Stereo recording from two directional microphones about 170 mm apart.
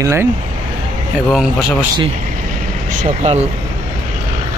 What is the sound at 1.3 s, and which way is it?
Speech, centre (ahead or behind).